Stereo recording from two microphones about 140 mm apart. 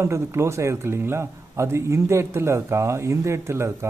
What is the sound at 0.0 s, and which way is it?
Speech, 20° right (ahead or behind).